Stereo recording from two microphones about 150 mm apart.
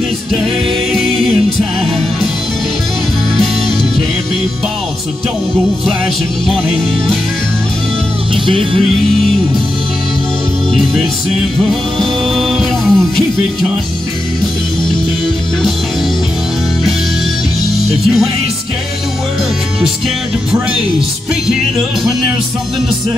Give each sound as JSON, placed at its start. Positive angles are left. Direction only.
{"t": 0.9, "sound": "music", "side_deg": 0}
{"t": 8.5, "sound": "music", "side_deg": -40}
{"t": 12.0, "sound": "music", "side_deg": 0}